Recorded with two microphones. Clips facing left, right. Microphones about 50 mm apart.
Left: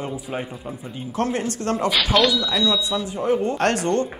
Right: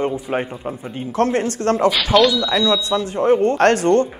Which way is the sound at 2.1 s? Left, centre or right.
Centre.